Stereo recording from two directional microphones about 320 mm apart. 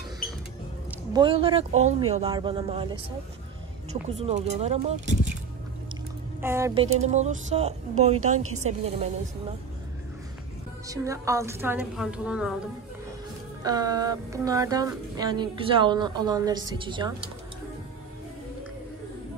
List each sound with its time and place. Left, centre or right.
1.1 s speech: centre
6.4 s speech: centre
10.9 s speech: centre
13.6 s speech: centre